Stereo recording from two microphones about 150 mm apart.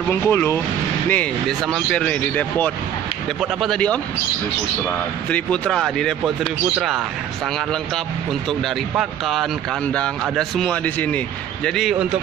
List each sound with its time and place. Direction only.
0.1 s speech: 15° left (ahead or behind)